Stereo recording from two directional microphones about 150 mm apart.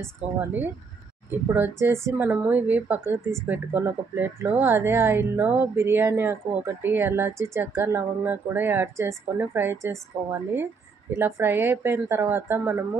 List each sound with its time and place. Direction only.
0.0 s speech: 10° right (ahead or behind)
11.1 s speech: 15° right (ahead or behind)